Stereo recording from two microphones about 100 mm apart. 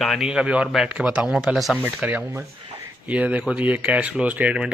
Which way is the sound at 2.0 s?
15° right (ahead or behind).